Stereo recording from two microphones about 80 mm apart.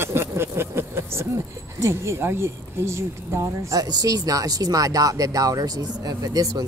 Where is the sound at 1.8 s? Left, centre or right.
Right.